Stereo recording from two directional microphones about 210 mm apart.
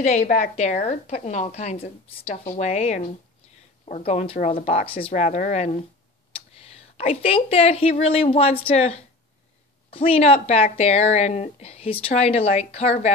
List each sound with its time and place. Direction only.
0.0 s a woman's voice: 35° left (ahead or behind)